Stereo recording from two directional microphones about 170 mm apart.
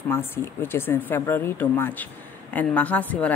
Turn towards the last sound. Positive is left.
turn(degrees=10)  # may be behind; listen again after turning